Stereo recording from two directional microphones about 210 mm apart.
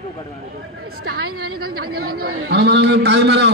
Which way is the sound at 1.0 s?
45° right (ahead or behind).